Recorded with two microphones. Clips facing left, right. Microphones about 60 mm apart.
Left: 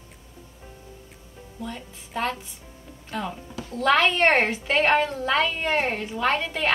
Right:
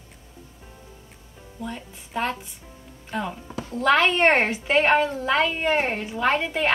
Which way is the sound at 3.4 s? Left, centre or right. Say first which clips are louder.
Right 3 dB; right.